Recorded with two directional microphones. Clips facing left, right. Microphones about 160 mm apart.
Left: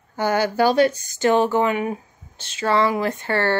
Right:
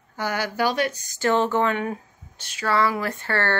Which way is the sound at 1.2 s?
15° left (ahead or behind).